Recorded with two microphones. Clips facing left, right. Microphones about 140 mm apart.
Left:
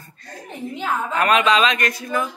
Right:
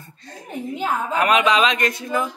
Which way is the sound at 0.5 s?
10° right (ahead or behind).